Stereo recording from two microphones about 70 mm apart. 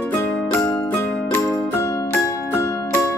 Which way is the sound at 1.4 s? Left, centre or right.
Left.